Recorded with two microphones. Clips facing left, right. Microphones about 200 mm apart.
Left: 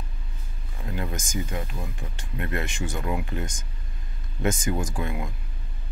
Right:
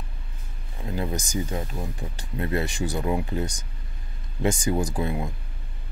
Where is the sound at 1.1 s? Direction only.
35° right (ahead or behind).